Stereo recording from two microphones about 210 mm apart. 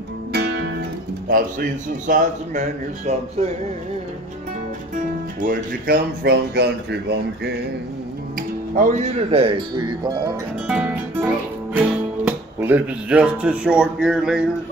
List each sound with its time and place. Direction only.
0.3 s music: 50° right (ahead or behind)
1.3 s speech: 40° right (ahead or behind)
5.4 s speech: 45° right (ahead or behind)
8.4 s speech: 40° right (ahead or behind)
10.7 s music: 5° right (ahead or behind)
11.7 s speech: 5° right (ahead or behind)